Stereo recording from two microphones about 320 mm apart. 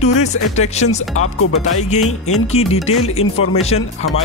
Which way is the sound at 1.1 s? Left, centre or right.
Left.